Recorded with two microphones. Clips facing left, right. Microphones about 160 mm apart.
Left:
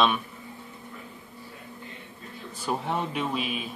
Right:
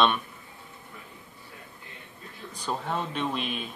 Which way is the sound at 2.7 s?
10° left (ahead or behind).